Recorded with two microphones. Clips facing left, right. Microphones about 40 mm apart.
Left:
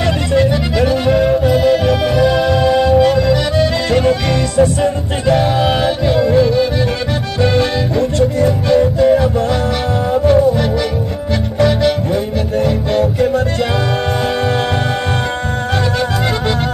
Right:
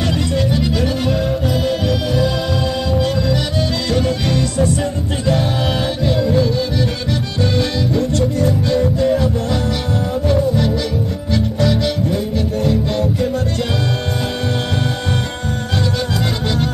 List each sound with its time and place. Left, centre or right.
0.3 s music: centre
5.3 s music: centre